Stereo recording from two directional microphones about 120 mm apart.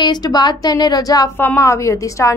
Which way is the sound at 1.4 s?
20° left (ahead or behind).